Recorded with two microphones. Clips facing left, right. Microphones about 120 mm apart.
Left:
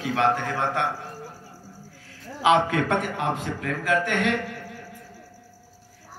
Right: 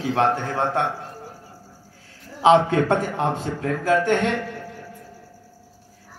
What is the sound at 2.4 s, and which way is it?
Speech, 30° right (ahead or behind).